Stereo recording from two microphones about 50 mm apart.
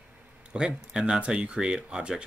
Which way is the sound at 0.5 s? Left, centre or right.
Centre.